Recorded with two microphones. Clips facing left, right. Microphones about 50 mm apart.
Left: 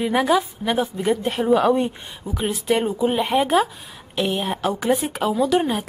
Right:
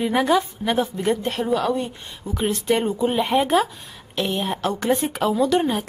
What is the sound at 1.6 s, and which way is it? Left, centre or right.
Speech, left.